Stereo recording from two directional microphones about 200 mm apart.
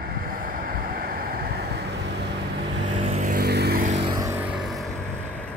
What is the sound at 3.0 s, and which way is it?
Music, 35° right (ahead or behind).